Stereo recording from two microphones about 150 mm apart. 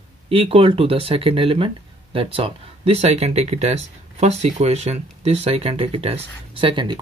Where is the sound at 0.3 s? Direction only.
40° right (ahead or behind).